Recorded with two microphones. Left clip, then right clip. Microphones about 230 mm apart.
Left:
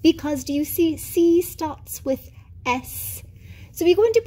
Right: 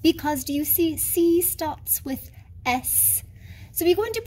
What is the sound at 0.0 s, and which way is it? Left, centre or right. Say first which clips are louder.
A woman's voice: left 2 dB; centre.